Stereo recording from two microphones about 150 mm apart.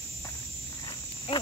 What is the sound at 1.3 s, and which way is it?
Cricket, 35° left (ahead or behind).